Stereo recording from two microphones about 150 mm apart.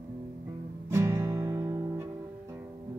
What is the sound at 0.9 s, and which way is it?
Music, 20° right (ahead or behind).